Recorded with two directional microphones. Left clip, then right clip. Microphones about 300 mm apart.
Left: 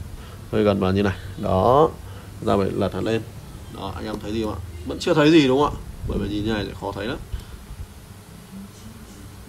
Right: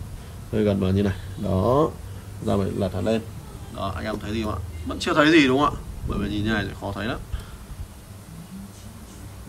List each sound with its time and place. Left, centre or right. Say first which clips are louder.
0.5 s speech: left 4 dB; centre
3.8 s speech: right 1 dB; centre